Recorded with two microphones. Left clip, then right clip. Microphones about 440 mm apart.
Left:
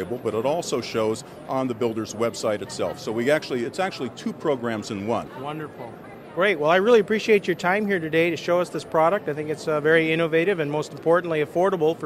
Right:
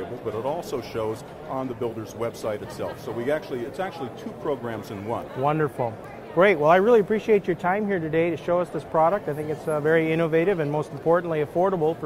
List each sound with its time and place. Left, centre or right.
0.4 s speech: left
5.4 s speech: right
6.3 s speech: centre